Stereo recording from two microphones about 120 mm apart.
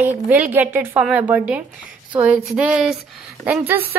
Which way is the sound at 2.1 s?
10° right (ahead or behind).